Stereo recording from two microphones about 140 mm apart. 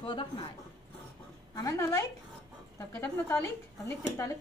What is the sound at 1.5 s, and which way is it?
Speech, 25° left (ahead or behind).